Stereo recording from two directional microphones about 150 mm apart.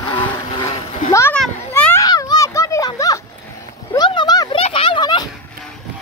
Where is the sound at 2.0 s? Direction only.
25° left (ahead or behind).